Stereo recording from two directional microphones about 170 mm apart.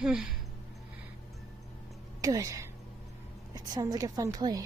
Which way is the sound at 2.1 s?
20° right (ahead or behind).